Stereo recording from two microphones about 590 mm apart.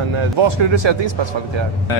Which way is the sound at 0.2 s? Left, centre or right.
Right.